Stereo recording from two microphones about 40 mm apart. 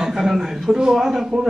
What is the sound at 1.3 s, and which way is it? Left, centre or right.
Speech, right.